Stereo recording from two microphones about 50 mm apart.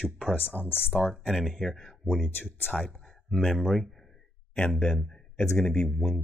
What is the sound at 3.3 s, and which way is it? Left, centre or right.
Speech, centre.